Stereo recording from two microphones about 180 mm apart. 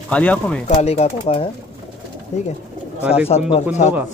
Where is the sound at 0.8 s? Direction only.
35° left (ahead or behind).